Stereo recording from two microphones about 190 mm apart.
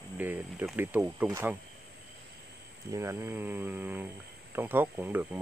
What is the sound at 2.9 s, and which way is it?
Speech, 15° right (ahead or behind).